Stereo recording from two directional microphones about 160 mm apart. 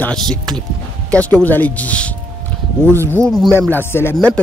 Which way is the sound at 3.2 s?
Centre (ahead or behind).